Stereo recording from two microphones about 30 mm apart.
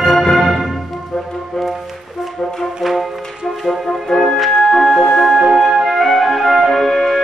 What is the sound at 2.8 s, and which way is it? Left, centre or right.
Music, centre.